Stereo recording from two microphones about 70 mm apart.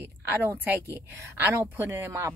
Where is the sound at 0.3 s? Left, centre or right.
Right.